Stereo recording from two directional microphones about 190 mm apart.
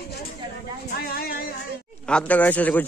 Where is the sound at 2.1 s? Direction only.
5° left (ahead or behind).